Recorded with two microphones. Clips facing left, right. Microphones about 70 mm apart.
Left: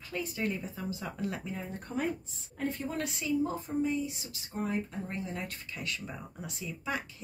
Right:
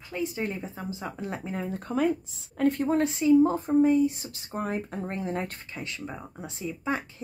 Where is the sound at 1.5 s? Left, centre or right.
Right.